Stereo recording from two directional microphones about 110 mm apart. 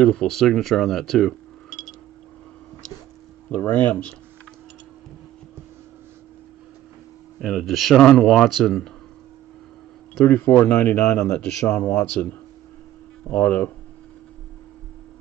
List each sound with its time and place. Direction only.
0.0 s speech: 5° left (ahead or behind)
3.4 s a man's voice: 15° left (ahead or behind)
7.3 s speech: centre (ahead or behind)
10.2 s a man's voice: 15° left (ahead or behind)